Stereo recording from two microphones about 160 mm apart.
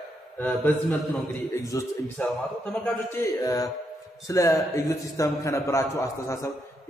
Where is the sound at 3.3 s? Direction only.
20° left (ahead or behind).